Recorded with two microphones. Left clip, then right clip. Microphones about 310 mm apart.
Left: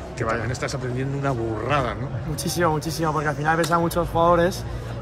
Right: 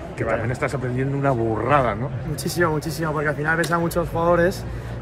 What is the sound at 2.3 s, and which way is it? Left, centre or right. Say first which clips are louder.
A man's voice: even; centre.